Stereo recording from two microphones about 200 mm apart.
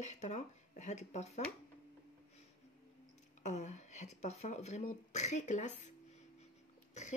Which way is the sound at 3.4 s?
35° left (ahead or behind).